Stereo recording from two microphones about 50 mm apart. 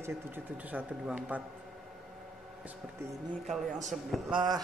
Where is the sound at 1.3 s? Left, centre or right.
Right.